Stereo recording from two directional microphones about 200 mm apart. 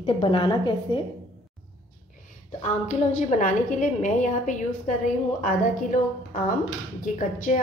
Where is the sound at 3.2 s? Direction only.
40° left (ahead or behind).